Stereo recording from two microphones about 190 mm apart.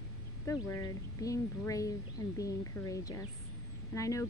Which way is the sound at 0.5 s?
15° left (ahead or behind).